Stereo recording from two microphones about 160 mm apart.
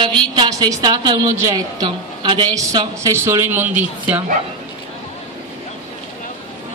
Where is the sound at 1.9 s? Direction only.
30° right (ahead or behind); by 3.8 s 10° right (ahead or behind).